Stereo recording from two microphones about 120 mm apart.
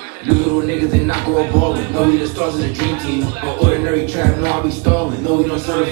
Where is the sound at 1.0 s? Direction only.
30° right (ahead or behind).